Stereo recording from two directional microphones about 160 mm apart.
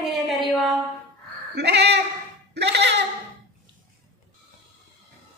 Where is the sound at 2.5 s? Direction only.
90° right.